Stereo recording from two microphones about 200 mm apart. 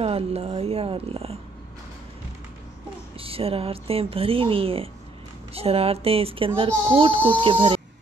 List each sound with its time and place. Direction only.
0.0 s speech: 30° right (ahead or behind)
3.2 s speech: 30° right (ahead or behind)